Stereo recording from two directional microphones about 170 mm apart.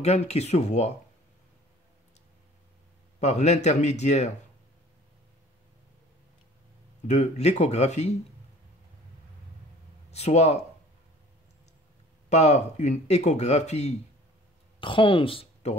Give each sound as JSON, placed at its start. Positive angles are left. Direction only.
{"t": 0.0, "sound": "speech", "side_deg": 40}
{"t": 3.2, "sound": "speech", "side_deg": 40}
{"t": 7.1, "sound": "speech", "side_deg": 40}
{"t": 10.1, "sound": "speech", "side_deg": 40}
{"t": 12.3, "sound": "speech", "side_deg": 40}
{"t": 14.8, "sound": "speech", "side_deg": 30}